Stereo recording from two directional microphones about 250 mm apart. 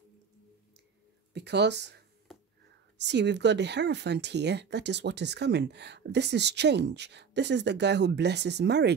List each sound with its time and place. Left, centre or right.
1.3 s speech: right
3.0 s speech: right